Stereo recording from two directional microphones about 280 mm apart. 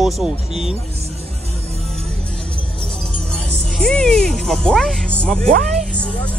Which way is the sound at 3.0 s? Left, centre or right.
Centre.